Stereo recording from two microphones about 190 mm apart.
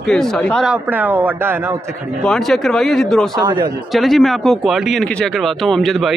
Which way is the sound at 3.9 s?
Centre (ahead or behind).